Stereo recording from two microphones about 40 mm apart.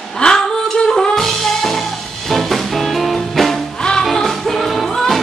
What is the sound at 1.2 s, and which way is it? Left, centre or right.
Music, centre.